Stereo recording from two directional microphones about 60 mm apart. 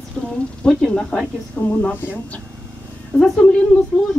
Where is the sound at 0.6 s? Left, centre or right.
Centre.